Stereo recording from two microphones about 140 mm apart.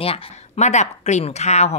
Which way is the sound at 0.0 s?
45° left (ahead or behind).